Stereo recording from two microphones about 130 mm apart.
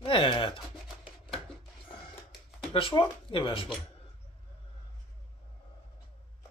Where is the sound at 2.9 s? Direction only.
25° left (ahead or behind).